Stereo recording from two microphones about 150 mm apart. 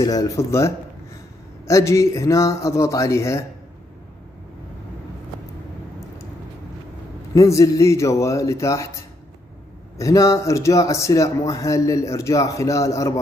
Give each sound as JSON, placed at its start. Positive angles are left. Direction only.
{"t": 0.0, "sound": "speech", "side_deg": 25}
{"t": 7.3, "sound": "speech", "side_deg": 20}
{"t": 9.9, "sound": "speech", "side_deg": 20}